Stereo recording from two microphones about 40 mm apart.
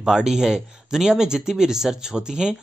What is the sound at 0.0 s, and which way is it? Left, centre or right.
Speech, centre.